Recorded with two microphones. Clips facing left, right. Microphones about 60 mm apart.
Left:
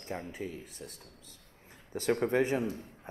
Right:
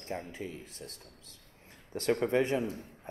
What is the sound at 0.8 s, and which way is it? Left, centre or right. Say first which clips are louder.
Speech: even; right.